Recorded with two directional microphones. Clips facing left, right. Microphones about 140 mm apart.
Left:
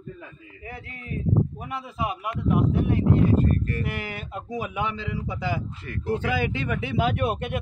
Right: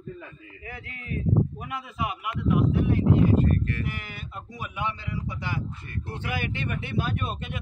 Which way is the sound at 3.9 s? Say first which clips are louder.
Left 4 dB; 75° left (ahead or behind).